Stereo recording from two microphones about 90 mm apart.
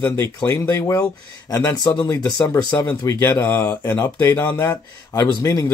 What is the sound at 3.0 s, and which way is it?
Speech, 30° left (ahead or behind).